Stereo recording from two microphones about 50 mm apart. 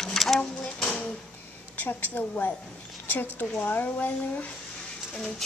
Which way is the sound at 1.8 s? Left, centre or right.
Left.